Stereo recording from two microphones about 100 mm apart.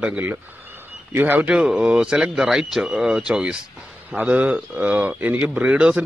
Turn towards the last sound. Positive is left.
turn(degrees=-10)  # may be behind; listen again after turning